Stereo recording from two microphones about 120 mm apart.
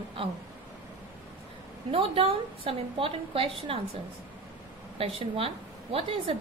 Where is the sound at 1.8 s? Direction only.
50° right (ahead or behind).